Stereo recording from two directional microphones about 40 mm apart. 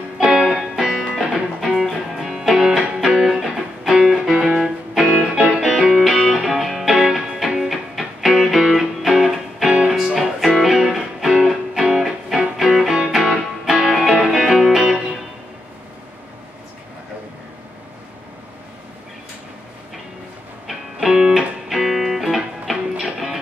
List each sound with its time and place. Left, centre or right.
0.2 s music: centre
1.1 s music: centre
9.7 s music: right
10.0 s music: centre
20.6 s music: centre